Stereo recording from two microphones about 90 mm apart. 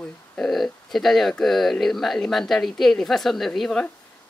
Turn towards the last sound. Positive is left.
turn(degrees=5)  # may be behind; listen again after turning